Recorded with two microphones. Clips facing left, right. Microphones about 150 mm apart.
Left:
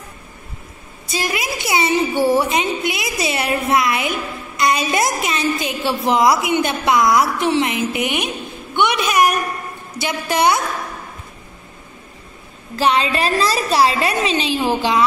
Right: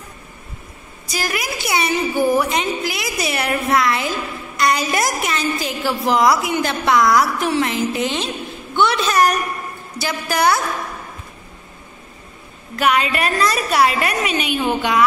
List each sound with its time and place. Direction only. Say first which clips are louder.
1.1 s a woman's voice: left 1 dB; 25° left (ahead or behind)
12.7 s a woman's voice: left 1 dB; 30° left (ahead or behind)